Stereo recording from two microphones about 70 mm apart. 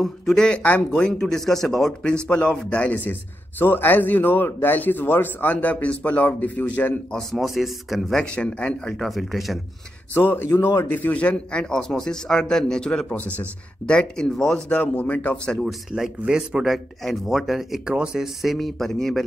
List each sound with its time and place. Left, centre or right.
0.0 s a man's voice: centre
2.8 s a man's voice: left
7.1 s speech: centre
8.2 s a man's voice: centre
8.9 s speech: centre
10.1 s speech: left
11.0 s a man's voice: left
13.1 s a man's voice: left; by 14.6 s centre
14.7 s a man's voice: left
15.9 s speech: centre